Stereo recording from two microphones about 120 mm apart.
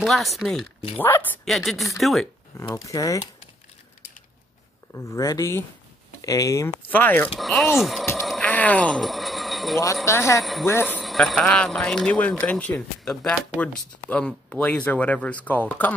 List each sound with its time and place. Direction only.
0.0 s speech: centre (ahead or behind)
0.9 s speech: 20° left (ahead or behind)
1.4 s speech: centre (ahead or behind)
2.7 s speech: 30° left (ahead or behind)
4.9 s speech: 25° left (ahead or behind)
6.9 s speech: 15° left (ahead or behind)
7.3 s speech: centre (ahead or behind)
8.2 s a sound: centre (ahead or behind)
8.5 s a sound: 10° left (ahead or behind)
10.0 s speech: 25° left (ahead or behind)
10.4 s speech: centre (ahead or behind)
10.7 s speech: 20° left (ahead or behind)
11.0 s speech: centre (ahead or behind)